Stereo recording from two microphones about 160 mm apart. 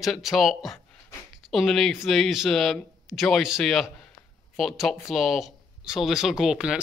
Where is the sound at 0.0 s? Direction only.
Centre (ahead or behind).